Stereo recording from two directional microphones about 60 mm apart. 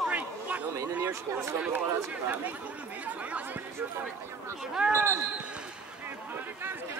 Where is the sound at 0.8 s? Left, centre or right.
Right.